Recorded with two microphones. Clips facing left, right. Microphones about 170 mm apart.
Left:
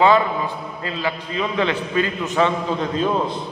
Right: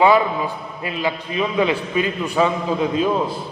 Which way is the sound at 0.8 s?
15° right (ahead or behind).